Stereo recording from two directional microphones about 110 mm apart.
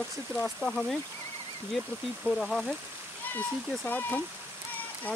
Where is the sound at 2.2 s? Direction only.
5° left (ahead or behind).